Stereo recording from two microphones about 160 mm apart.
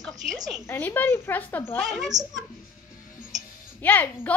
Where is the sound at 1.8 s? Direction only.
Centre (ahead or behind).